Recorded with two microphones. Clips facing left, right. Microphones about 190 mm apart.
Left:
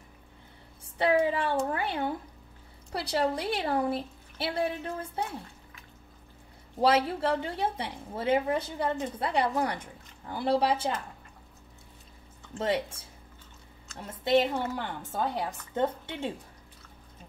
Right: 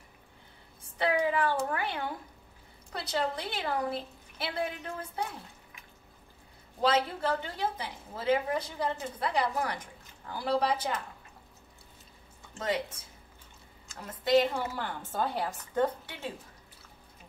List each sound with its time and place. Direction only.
0.9 s a woman's voice: 30° left (ahead or behind)
2.9 s a woman's voice: 30° left (ahead or behind)
6.8 s a woman's voice: 30° left (ahead or behind)
12.5 s a woman's voice: 30° left (ahead or behind)
13.9 s a woman's voice: 25° left (ahead or behind)
14.8 s a woman's voice: 15° left (ahead or behind)